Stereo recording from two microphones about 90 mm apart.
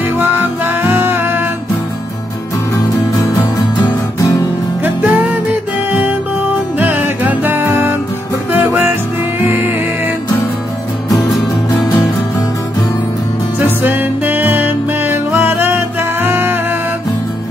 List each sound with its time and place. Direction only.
0.2 s music: 20° right (ahead or behind)
4.8 s music: 20° right (ahead or behind)
6.8 s music: 20° right (ahead or behind)
13.8 s music: 20° right (ahead or behind)